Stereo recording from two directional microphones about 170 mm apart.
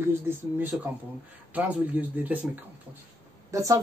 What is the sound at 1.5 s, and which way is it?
Speech, 10° right (ahead or behind).